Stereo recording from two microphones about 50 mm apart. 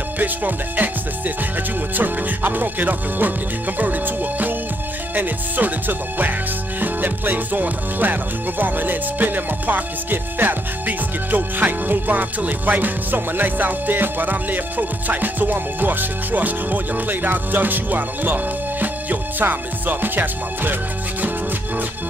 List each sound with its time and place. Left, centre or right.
0.2 s music: right
2.0 s speech: right